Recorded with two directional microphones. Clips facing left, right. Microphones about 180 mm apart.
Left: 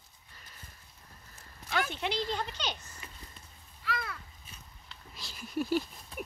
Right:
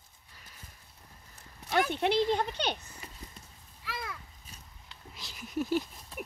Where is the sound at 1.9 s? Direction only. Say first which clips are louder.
Right 7 dB; 55° right (ahead or behind).